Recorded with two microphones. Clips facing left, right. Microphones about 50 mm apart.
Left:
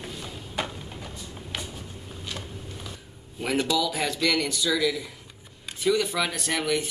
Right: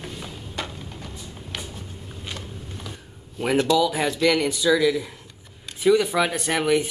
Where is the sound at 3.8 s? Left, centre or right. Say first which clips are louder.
Right 5 dB; centre.